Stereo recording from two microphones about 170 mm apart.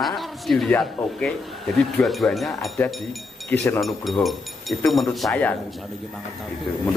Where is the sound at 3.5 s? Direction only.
15° left (ahead or behind).